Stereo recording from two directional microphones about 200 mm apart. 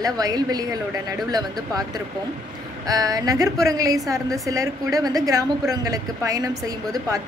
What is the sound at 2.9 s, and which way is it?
A woman's voice, 20° right (ahead or behind).